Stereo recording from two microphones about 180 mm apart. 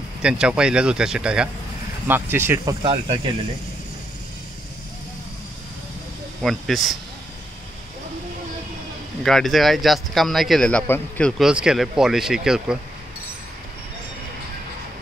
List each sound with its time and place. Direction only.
0.2 s speech: 5° right (ahead or behind)
2.8 s speech: 30° right (ahead or behind)
6.4 s speech: centre (ahead or behind)
9.2 s speech: centre (ahead or behind)